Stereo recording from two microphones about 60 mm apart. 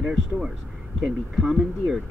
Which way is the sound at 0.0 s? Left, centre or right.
Centre.